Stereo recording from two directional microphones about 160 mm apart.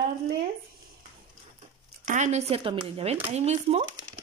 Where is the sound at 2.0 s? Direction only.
50° right (ahead or behind).